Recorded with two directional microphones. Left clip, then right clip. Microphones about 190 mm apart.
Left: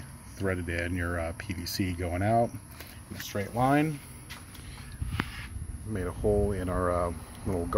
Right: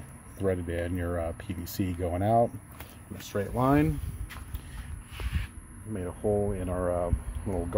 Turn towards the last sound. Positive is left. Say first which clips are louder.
# left 1 dB
turn(degrees=-5)  # may be behind; listen again after turning